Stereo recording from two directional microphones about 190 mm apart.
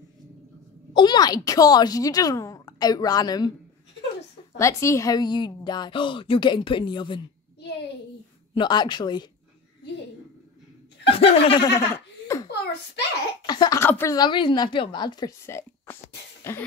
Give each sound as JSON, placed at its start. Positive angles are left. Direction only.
{"t": 0.9, "sound": "speech", "side_deg": 20}
{"t": 4.6, "sound": "speech", "side_deg": 15}
{"t": 8.5, "sound": "speech", "side_deg": 25}
{"t": 11.1, "sound": "speech", "side_deg": 30}
{"t": 11.6, "sound": "laughter", "side_deg": 15}
{"t": 13.5, "sound": "speech", "side_deg": 20}
{"t": 16.5, "sound": "cough", "side_deg": 10}